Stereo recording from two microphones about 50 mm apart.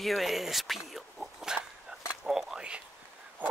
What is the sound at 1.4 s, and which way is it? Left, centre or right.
Dog, centre.